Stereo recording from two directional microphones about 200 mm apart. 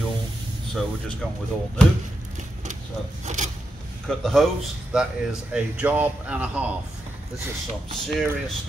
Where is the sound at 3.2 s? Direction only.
35° right (ahead or behind).